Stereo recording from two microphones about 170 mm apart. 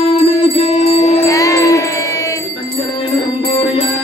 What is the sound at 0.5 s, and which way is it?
Music, 40° left (ahead or behind).